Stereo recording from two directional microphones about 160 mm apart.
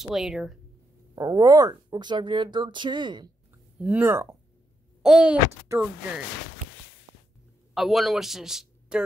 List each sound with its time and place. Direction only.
0.0 s speech: centre (ahead or behind)
1.1 s speech: 20° right (ahead or behind)
3.8 s speech: 10° right (ahead or behind)
5.0 s speech: 5° right (ahead or behind)
7.7 s speech: centre (ahead or behind)